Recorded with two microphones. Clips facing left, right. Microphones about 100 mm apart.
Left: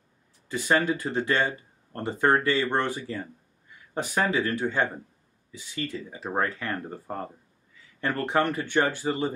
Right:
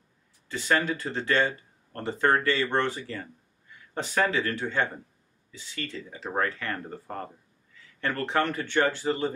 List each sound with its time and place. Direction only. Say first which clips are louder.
0.5 s speech: left 2 dB; 15° left (ahead or behind)